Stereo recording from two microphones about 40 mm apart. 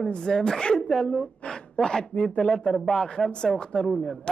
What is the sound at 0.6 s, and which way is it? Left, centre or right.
A woman's voice, left.